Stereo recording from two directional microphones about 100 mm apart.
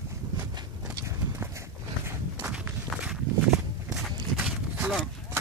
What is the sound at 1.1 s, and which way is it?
Walk, 25° right (ahead or behind).